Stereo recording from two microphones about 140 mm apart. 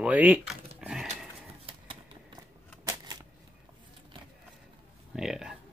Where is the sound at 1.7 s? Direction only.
40° right (ahead or behind).